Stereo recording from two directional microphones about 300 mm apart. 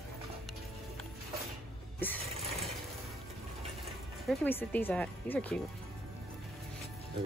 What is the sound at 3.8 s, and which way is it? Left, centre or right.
Speech, centre.